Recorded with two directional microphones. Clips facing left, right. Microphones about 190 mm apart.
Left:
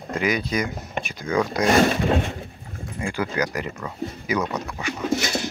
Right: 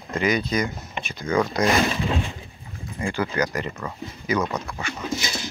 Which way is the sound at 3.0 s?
10° left (ahead or behind).